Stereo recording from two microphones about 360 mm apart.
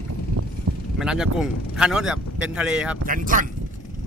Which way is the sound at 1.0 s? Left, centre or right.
Centre.